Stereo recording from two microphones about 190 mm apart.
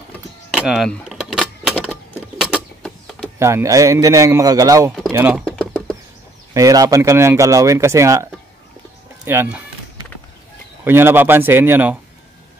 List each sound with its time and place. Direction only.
0.6 s keys jangling: centre (ahead or behind)
2.4 s a sound: centre (ahead or behind)
3.3 s speech: 15° right (ahead or behind)
5.4 s bird: 5° left (ahead or behind)
6.5 s speech: 20° right (ahead or behind)
9.2 s music: 10° right (ahead or behind)
10.8 s speech: 10° right (ahead or behind)